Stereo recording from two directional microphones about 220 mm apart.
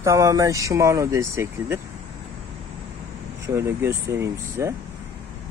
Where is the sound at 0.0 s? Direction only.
15° right (ahead or behind).